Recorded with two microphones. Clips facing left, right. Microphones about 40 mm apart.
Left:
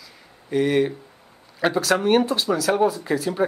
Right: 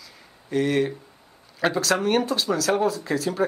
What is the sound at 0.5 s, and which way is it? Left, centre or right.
A man's voice, centre.